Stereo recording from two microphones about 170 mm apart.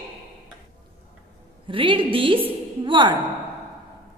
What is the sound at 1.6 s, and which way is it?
A woman's voice, 30° right (ahead or behind).